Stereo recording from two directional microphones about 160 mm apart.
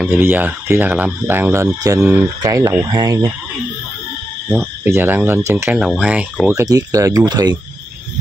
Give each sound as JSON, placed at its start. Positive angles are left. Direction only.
{"t": 0.1, "sound": "speech", "side_deg": -15}
{"t": 4.8, "sound": "speech", "side_deg": -15}
{"t": 5.8, "sound": "speech", "side_deg": -5}